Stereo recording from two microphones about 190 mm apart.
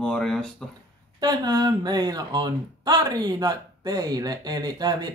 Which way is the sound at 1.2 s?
20° right (ahead or behind).